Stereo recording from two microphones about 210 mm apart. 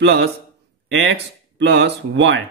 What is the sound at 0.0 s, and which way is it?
Speech, 55° right (ahead or behind).